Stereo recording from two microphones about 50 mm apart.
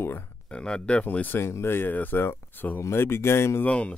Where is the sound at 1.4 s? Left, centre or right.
Left.